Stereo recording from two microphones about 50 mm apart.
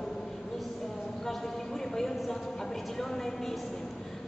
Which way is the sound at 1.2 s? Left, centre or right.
Centre.